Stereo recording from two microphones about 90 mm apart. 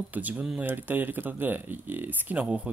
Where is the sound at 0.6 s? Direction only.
20° right (ahead or behind).